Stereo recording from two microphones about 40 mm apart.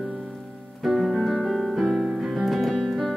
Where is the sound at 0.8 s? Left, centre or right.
Centre.